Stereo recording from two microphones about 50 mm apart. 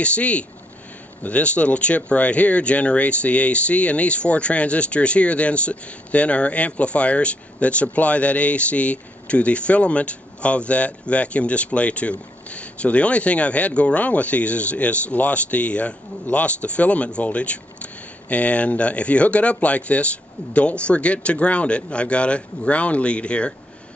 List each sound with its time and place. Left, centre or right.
0.0 s speech: left